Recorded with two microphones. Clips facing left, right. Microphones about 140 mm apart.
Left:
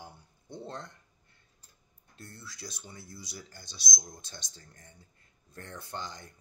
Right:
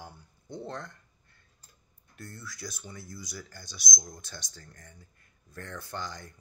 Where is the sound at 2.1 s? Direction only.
25° left (ahead or behind).